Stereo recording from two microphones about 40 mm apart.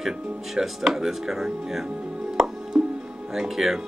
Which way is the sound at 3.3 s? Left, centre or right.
Centre.